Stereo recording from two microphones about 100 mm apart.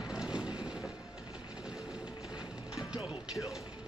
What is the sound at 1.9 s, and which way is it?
Music, 10° right (ahead or behind).